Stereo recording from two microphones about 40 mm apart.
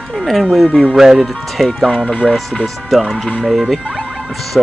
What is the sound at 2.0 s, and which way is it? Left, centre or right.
Speech, left.